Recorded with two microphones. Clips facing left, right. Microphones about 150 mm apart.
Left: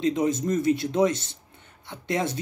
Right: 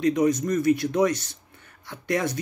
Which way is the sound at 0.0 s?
25° left (ahead or behind).